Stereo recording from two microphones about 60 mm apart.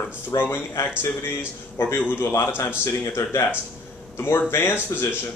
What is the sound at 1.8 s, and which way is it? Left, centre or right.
Speech, left.